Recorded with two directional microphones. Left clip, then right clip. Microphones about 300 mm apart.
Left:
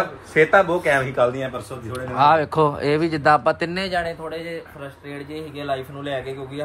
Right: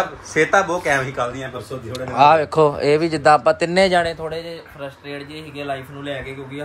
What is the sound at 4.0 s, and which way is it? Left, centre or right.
Speech, right.